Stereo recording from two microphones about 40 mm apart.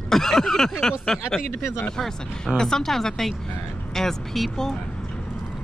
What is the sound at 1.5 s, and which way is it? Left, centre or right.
Speech, left.